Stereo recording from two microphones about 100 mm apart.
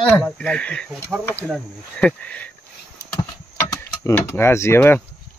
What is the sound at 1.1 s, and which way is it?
Speech, 15° right (ahead or behind).